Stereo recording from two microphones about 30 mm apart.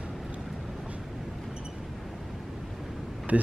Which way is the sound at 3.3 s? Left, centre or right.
Right.